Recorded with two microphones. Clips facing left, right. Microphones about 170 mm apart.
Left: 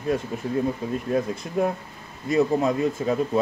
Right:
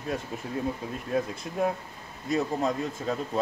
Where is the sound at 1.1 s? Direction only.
Centre (ahead or behind).